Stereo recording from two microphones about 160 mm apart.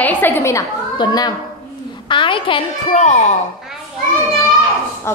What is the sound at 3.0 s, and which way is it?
Speech, 45° left (ahead or behind).